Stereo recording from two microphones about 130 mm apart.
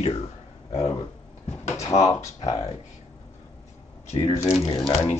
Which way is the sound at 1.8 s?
55° left (ahead or behind).